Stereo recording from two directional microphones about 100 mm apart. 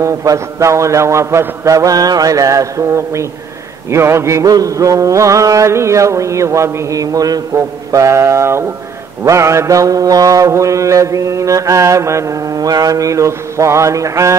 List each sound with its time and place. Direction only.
0.0 s mantra: 30° right (ahead or behind)